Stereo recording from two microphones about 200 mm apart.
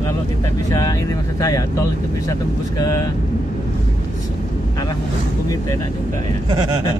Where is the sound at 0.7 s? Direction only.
20° left (ahead or behind).